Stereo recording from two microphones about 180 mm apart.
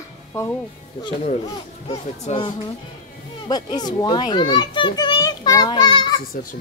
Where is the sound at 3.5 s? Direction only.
20° left (ahead or behind).